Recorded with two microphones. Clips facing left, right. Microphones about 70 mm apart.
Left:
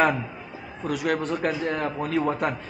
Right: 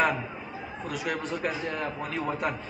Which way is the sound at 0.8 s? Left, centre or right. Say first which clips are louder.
Left 7 dB; left.